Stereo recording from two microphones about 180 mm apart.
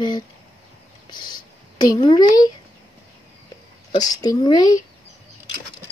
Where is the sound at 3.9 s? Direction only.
20° left (ahead or behind).